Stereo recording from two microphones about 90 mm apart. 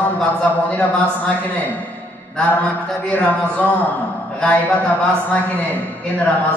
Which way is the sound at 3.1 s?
15° left (ahead or behind).